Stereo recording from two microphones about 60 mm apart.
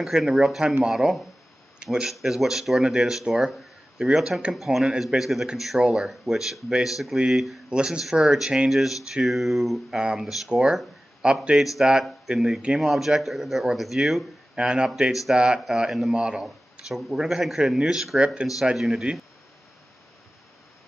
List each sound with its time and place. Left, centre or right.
0.0 s speech: centre
4.6 s speech: centre
7.7 s speech: centre
18.6 s speech: centre